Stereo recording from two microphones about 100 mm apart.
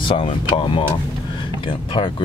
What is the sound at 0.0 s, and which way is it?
Speech, 65° left (ahead or behind).